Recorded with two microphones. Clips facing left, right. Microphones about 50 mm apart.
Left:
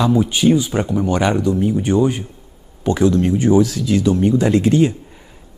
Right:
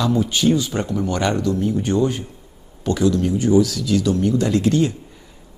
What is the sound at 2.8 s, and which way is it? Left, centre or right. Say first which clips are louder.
A man's voice: left 3 dB; left.